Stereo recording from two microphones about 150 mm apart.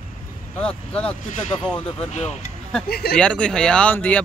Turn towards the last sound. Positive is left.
turn(degrees=10)  # may be behind; listen again after turning